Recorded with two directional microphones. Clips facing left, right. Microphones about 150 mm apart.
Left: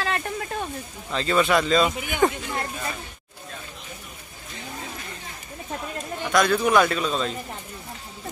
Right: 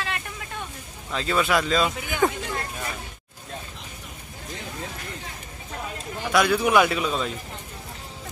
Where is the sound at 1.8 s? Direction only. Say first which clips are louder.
Left 1 dB; 15° left (ahead or behind).